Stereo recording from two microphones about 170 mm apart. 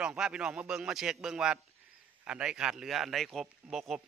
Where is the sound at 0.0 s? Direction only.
5° right (ahead or behind).